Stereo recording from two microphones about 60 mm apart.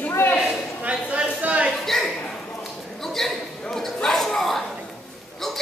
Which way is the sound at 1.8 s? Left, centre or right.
Centre.